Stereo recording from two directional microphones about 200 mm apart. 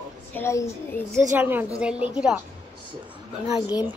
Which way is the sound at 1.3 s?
10° right (ahead or behind).